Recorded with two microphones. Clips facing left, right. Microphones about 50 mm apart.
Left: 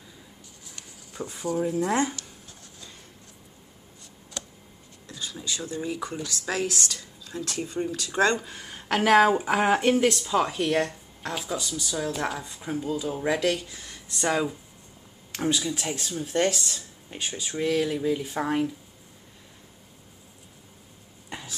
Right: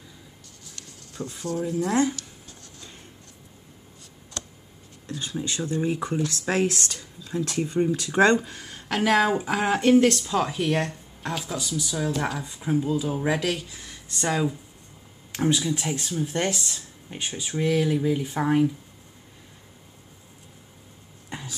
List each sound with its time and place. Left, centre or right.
0.7 s a sound: centre
5.0 s speech: right
8.5 s speech: centre
12.5 s speech: centre